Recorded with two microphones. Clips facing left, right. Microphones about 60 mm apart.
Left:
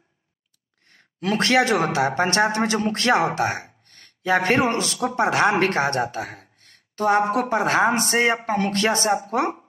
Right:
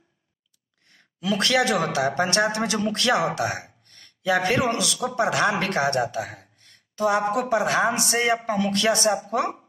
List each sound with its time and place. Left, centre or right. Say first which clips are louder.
0.8 s a man's voice: left 1 dB; left